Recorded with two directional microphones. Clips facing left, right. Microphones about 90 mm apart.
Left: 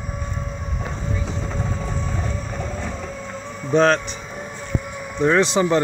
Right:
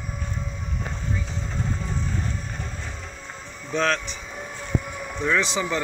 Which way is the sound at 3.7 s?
40° left (ahead or behind).